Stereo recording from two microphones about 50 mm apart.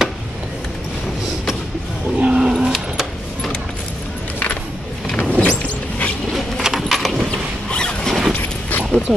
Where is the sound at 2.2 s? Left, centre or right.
Centre.